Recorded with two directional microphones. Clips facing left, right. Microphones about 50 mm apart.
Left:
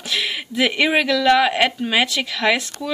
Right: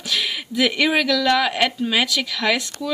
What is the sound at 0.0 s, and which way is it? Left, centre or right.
Speech, left.